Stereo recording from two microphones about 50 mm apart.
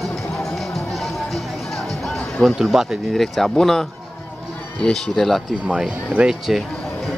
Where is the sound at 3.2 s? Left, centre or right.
Centre.